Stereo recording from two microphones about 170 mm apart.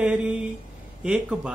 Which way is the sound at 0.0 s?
5° right (ahead or behind).